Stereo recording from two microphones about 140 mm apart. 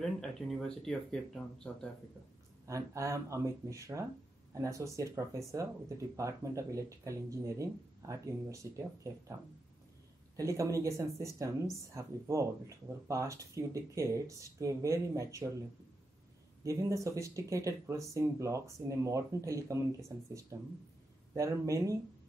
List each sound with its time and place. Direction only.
0.0 s speech: 5° left (ahead or behind)
2.6 s speech: 20° right (ahead or behind)
10.3 s speech: 20° right (ahead or behind)
16.6 s speech: 20° right (ahead or behind)
21.4 s speech: 20° right (ahead or behind)